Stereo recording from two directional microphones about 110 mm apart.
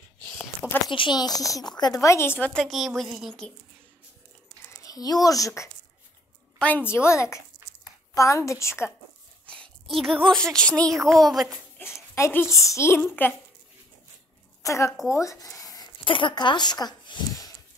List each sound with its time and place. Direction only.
0.6 s speech: 10° right (ahead or behind)
0.9 s speech: 45° left (ahead or behind); by 2.5 s 20° left (ahead or behind)
2.5 s a woman's voice: 5° right (ahead or behind)
4.6 s a child's voice: 35° left (ahead or behind)
6.6 s a woman's voice: 20° left (ahead or behind)
9.5 s a woman's voice: 5° left (ahead or behind)
11.8 s a child's voice: 25° left (ahead or behind)
14.6 s a woman's voice: 30° left (ahead or behind)
15.0 s a sound: 30° left (ahead or behind)
16.0 s speech: 50° left (ahead or behind)